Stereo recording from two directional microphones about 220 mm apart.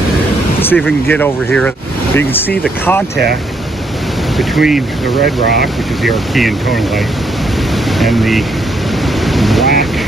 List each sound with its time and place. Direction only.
0.6 s speech: 10° left (ahead or behind)
4.4 s speech: centre (ahead or behind)
5.2 s speech: 45° right (ahead or behind)
6.0 s speech: centre (ahead or behind)
8.0 s speech: centre (ahead or behind)
9.2 s boat: centre (ahead or behind)